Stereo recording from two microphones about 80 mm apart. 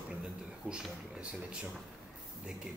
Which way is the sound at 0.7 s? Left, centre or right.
Centre.